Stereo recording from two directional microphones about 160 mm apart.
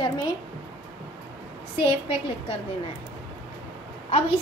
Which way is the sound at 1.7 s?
35° left (ahead or behind).